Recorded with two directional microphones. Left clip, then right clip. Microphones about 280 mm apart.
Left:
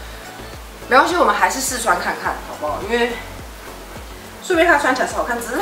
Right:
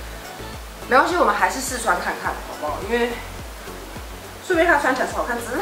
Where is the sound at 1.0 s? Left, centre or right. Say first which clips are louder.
Left 3 dB; centre.